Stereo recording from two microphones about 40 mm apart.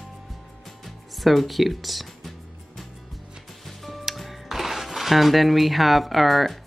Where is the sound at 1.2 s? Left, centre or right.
Centre.